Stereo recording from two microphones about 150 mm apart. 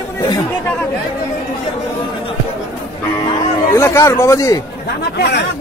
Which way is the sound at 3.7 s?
20° left (ahead or behind).